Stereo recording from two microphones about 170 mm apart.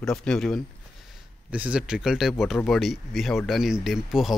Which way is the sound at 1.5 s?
5° right (ahead or behind).